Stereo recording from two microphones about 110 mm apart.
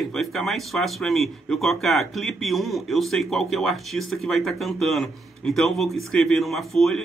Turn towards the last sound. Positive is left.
turn(degrees=0)  # may be behind; listen again after turning